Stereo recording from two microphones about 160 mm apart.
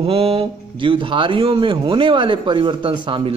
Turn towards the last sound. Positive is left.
turn(degrees=-30)  # may be behind; listen again after turning